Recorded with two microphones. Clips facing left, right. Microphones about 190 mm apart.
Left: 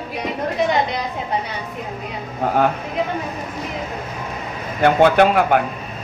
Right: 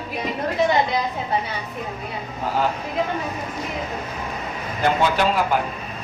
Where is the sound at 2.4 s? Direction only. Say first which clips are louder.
Left 5 dB; 55° left (ahead or behind).